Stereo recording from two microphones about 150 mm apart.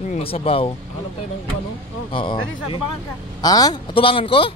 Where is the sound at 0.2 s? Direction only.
40° left (ahead or behind).